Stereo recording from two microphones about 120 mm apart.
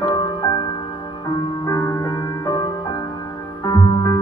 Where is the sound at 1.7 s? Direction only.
25° left (ahead or behind).